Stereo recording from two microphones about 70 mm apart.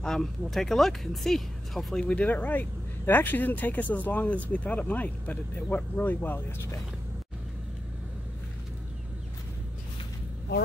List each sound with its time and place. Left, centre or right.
0.0 s speech: centre
2.0 s speech: centre